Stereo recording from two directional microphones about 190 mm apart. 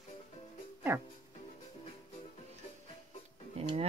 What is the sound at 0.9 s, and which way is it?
Speech, 10° right (ahead or behind).